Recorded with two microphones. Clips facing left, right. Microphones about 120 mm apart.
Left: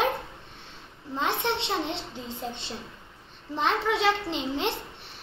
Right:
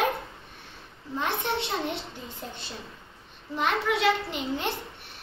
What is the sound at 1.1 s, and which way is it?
A child's voice, 25° left (ahead or behind).